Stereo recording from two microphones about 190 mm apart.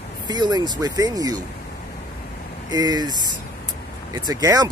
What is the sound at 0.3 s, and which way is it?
Speech, 20° right (ahead or behind).